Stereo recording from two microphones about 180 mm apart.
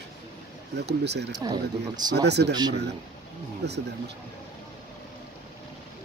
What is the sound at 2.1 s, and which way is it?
Speech, 70° right (ahead or behind).